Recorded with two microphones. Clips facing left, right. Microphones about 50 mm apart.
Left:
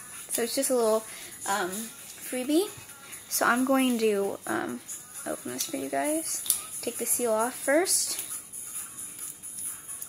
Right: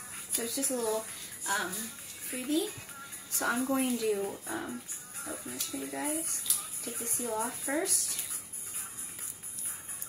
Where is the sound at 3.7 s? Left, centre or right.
Left.